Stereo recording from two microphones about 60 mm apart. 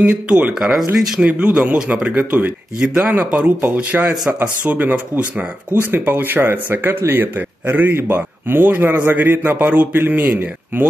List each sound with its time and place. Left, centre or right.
0.0 s speech: right
0.6 s speech: centre; by 2.5 s right
2.8 s speech: centre
3.1 s speech: right